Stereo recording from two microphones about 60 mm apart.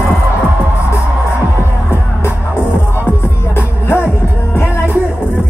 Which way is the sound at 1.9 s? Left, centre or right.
Left.